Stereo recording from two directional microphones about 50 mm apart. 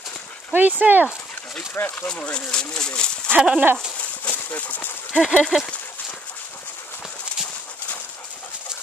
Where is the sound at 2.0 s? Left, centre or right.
Left.